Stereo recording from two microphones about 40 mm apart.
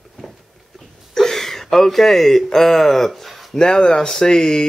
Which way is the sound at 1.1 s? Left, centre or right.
Centre.